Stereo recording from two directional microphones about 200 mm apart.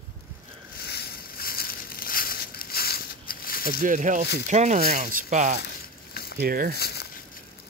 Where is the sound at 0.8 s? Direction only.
50° left (ahead or behind).